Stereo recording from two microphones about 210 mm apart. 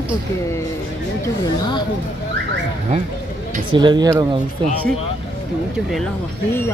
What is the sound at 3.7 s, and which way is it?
Speech, 20° right (ahead or behind).